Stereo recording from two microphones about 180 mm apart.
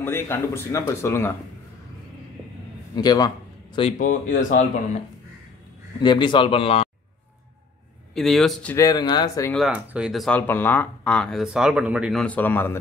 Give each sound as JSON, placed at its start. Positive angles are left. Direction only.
{"t": 0.0, "sound": "speech", "side_deg": 15}
{"t": 3.0, "sound": "a man's voice", "side_deg": 20}
{"t": 4.0, "sound": "speech", "side_deg": 45}
{"t": 5.9, "sound": "a man's voice", "side_deg": 25}
{"t": 8.1, "sound": "speech", "side_deg": 0}
{"t": 8.7, "sound": "a man's voice", "side_deg": 20}
{"t": 9.5, "sound": "speech", "side_deg": 0}